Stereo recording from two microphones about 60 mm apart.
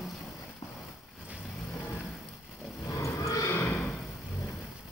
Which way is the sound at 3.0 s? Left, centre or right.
Left.